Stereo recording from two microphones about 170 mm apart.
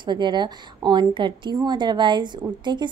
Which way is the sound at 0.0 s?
25° right (ahead or behind).